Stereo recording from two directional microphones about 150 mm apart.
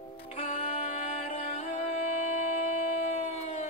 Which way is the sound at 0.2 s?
40° left (ahead or behind).